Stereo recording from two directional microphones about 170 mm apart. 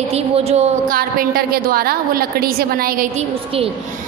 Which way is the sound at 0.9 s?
60° right (ahead or behind).